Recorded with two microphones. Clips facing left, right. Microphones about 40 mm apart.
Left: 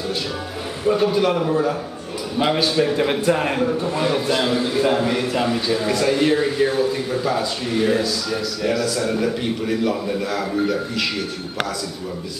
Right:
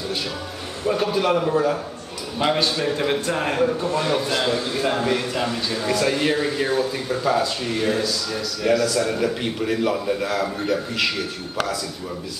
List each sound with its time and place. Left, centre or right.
0.8 s a man's voice: centre